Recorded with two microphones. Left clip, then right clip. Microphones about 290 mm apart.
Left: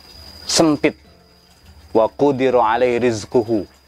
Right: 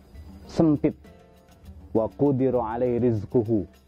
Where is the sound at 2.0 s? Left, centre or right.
Left.